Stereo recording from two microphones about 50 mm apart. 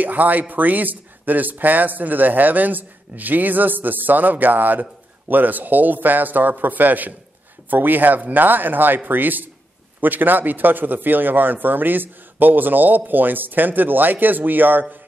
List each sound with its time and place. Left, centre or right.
0.0 s a man's voice: right